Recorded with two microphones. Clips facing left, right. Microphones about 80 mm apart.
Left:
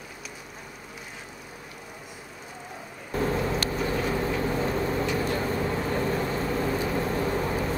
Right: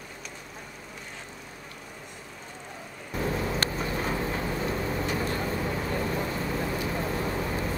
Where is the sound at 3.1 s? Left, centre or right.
Left.